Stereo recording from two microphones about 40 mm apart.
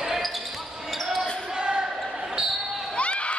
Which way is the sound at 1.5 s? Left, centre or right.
Right.